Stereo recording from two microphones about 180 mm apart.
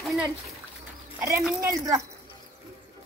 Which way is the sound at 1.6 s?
20° right (ahead or behind).